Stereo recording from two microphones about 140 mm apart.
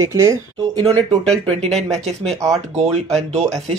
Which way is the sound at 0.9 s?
5° left (ahead or behind).